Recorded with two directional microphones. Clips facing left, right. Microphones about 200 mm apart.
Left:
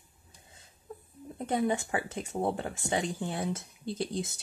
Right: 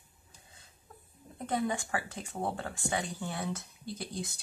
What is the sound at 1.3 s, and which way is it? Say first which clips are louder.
Speech: left 3 dB; 25° left (ahead or behind).